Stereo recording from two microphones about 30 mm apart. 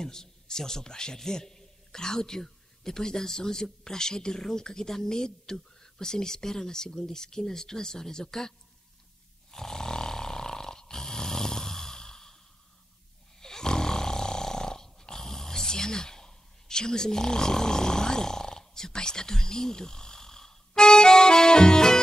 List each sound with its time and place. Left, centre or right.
0.0 s a man's voice: centre
9.5 s snoring: centre
13.4 s snoring: centre